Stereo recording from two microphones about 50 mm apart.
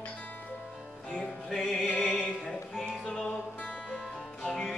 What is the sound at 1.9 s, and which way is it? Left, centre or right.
Music, left.